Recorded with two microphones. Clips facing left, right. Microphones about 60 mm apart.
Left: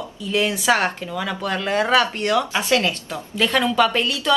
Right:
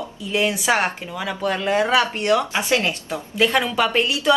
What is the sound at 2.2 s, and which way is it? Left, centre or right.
Speech, right.